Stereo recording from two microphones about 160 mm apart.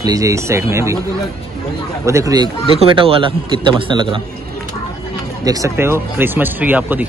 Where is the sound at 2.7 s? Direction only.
35° right (ahead or behind).